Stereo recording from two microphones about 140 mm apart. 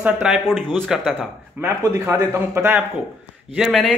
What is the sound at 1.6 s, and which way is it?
Speech, 15° right (ahead or behind).